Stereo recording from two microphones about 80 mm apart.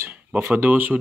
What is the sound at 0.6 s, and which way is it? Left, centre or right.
Speech, right.